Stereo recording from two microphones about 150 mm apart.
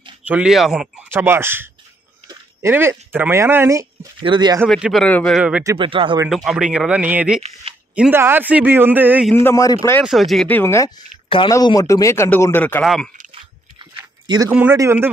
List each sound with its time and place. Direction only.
0.2 s speech: 10° right (ahead or behind)
1.1 s a man's voice: 15° right (ahead or behind)
4.2 s speech: 30° right (ahead or behind)
4.6 s a man's voice: centre (ahead or behind)
5.8 s speech: 35° right (ahead or behind)
6.2 s a man's voice: 5° right (ahead or behind)
9.3 s a man's voice: 15° left (ahead or behind)
10.0 s speech: centre (ahead or behind)
10.5 s a man's voice: 15° left (ahead or behind)
11.2 s speech: 35° left (ahead or behind)
11.5 s speech: 25° left (ahead or behind)
12.8 s speech: centre (ahead or behind)
13.3 s a sound: 30° right (ahead or behind)
14.5 s a man's voice: 10° right (ahead or behind)